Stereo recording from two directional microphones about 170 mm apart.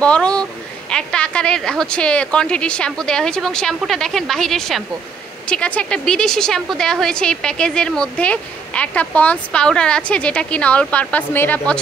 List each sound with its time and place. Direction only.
0.0 s a woman's voice: 5° left (ahead or behind)